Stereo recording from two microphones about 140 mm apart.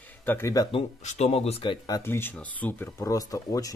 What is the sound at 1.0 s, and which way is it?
Speech, 55° left (ahead or behind).